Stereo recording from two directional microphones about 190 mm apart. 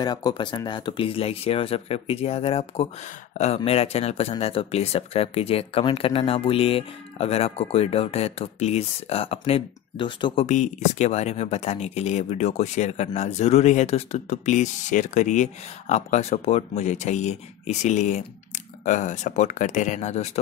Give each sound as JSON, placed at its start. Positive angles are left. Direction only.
{"t": 0.0, "sound": "speech", "side_deg": 20}
{"t": 10.4, "sound": "speech", "side_deg": 40}